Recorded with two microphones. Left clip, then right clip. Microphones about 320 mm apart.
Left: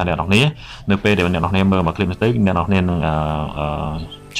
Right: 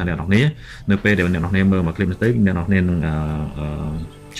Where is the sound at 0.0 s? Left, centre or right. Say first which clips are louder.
Left 4 dB; centre.